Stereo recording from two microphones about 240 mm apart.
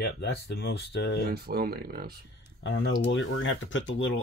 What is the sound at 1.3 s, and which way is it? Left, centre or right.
Speech, right.